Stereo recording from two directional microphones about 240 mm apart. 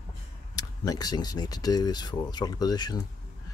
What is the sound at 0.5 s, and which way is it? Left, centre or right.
Speech, centre.